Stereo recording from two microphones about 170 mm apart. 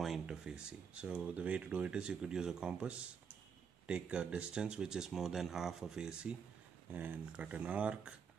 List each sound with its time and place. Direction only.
0.0 s speech: 5° right (ahead or behind)